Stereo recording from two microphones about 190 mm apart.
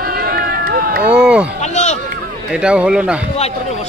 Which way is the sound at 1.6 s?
35° left (ahead or behind).